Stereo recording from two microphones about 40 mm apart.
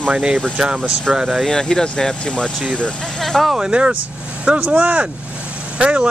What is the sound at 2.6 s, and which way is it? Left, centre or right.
Speech, right.